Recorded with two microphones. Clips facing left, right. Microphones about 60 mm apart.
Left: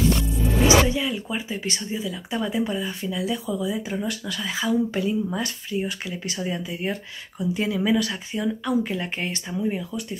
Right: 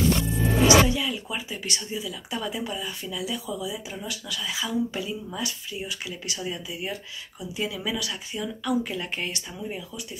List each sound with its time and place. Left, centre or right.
0.7 s speech: left